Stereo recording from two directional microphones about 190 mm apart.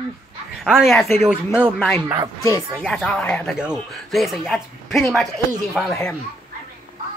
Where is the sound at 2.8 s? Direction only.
5° left (ahead or behind).